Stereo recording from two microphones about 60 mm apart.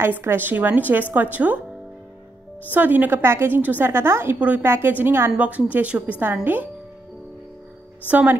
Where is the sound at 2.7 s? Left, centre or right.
Right.